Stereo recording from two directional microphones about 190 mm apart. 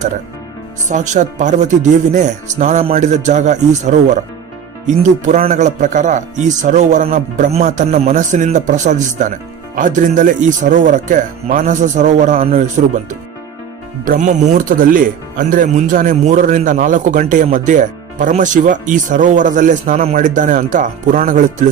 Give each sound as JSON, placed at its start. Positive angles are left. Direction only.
{"t": 0.8, "sound": "speech", "side_deg": -40}
{"t": 14.0, "sound": "speech", "side_deg": -45}